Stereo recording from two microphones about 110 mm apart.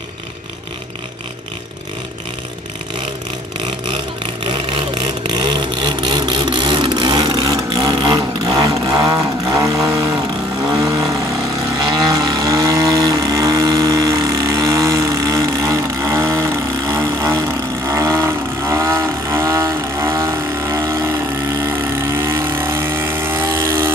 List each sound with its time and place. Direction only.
4.5 s vehicle: 50° right (ahead or behind); by 9.5 s 35° right (ahead or behind)
9.6 s chainsaw: 30° right (ahead or behind)
10.8 s vehicle: 30° right (ahead or behind)